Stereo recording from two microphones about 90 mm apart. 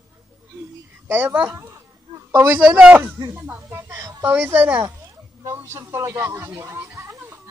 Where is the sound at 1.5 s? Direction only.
30° right (ahead or behind).